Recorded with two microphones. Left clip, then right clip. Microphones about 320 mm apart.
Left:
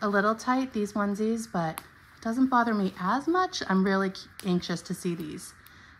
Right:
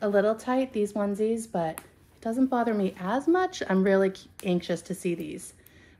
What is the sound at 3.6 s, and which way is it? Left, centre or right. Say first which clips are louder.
Speech: right 4 dB; centre.